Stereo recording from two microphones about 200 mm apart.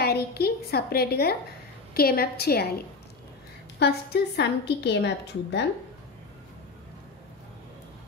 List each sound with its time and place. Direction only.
0.0 s a woman's voice: 50° left (ahead or behind)
3.8 s a woman's voice: 55° left (ahead or behind)